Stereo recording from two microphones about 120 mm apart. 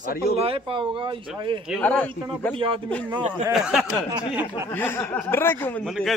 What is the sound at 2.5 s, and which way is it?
Speech, 45° right (ahead or behind).